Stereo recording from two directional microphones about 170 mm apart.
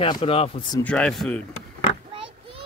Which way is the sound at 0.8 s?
5° left (ahead or behind).